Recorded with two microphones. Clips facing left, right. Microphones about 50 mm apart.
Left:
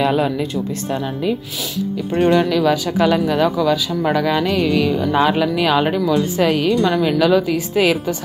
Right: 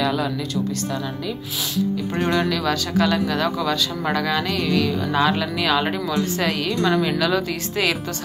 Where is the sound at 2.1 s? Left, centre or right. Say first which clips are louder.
Left 8 dB; left.